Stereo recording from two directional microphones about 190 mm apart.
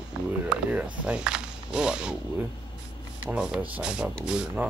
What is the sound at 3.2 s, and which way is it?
Speech, 5° right (ahead or behind).